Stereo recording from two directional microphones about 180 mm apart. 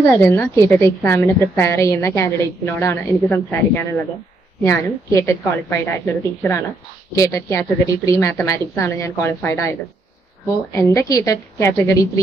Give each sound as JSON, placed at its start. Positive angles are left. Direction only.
{"t": 0.1, "sound": "a woman's voice", "side_deg": 15}